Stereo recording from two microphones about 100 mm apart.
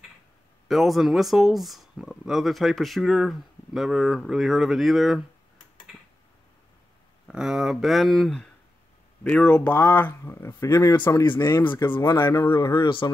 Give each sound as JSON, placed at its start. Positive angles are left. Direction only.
{"t": 0.7, "sound": "speech", "side_deg": 0}
{"t": 7.2, "sound": "speech", "side_deg": -5}
{"t": 12.0, "sound": "speech", "side_deg": 35}